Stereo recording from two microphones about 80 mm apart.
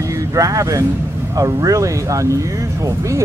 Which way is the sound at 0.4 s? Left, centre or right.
Right.